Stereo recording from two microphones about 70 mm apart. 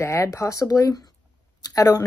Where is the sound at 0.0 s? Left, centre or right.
Left.